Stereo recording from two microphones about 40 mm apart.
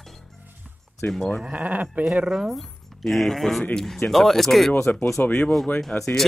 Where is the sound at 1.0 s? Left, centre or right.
Left.